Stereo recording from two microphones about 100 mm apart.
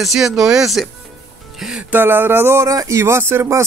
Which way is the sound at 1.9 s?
20° right (ahead or behind).